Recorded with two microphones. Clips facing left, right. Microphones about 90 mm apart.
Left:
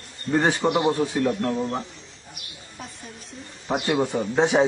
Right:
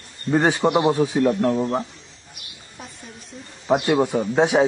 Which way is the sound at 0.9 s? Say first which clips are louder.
Right 4 dB; 5° right (ahead or behind).